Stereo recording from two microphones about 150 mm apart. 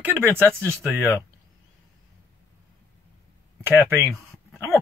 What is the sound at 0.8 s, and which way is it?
Speech, 15° left (ahead or behind).